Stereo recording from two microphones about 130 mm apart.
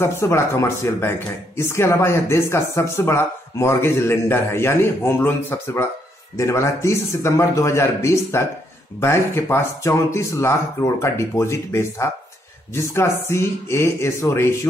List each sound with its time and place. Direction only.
0.0 s speech: 20° left (ahead or behind)